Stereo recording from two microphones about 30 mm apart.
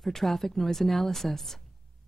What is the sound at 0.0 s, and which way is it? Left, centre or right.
A woman's voice, centre.